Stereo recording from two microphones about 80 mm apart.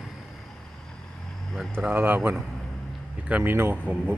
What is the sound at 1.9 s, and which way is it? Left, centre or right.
Speech, right.